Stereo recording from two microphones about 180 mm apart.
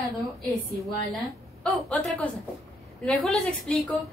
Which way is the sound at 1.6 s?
5° left (ahead or behind).